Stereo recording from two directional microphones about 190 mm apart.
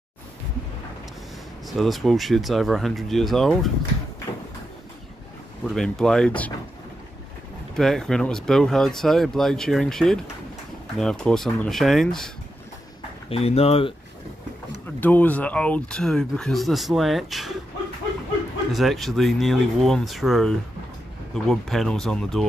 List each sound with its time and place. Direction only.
1.7 s speech: centre (ahead or behind)
5.8 s speech: 5° left (ahead or behind)
7.7 s speech: centre (ahead or behind)
13.3 s speech: 30° left (ahead or behind)
15.0 s speech: 10° left (ahead or behind)
18.7 s speech: centre (ahead or behind)